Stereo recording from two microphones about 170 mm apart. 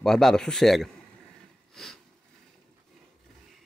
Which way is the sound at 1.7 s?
Centre (ahead or behind).